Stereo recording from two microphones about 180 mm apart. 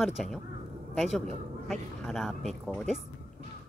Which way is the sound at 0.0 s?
Centre (ahead or behind).